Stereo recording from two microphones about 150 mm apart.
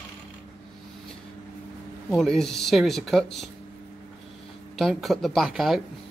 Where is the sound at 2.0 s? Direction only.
5° left (ahead or behind).